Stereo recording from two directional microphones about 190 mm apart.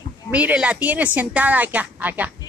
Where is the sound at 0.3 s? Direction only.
5° right (ahead or behind).